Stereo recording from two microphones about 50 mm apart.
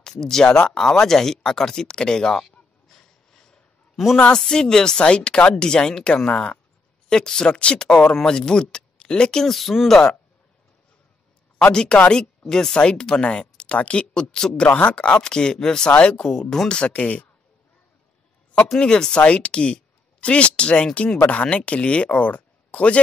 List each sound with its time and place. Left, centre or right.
0.0 s speech: centre
2.4 s goose: centre
3.9 s a sound: centre
4.4 s speech: centre
11.7 s speech: centre
14.5 s speech: left
15.9 s speech: left
16.2 s speech: centre
16.7 s speech: left
18.8 s speech: centre